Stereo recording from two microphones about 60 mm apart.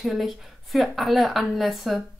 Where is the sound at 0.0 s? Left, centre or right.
Centre.